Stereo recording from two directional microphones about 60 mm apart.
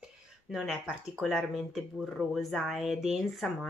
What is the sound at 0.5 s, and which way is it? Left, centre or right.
Speech, centre.